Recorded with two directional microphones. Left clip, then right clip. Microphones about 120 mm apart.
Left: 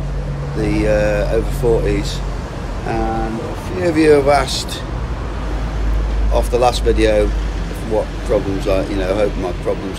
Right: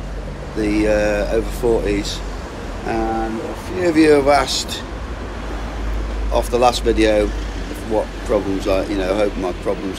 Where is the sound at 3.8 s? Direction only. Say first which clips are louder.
Left 1 dB; 5° left (ahead or behind).